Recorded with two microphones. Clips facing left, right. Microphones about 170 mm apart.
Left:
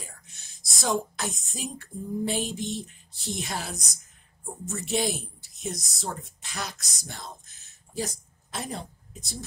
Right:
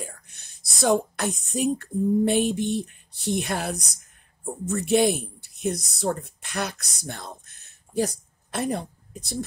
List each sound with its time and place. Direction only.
0.0 s a woman's voice: 60° right (ahead or behind)